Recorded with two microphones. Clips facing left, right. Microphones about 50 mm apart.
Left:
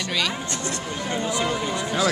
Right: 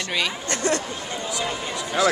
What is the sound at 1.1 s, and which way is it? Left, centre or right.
Speech, left.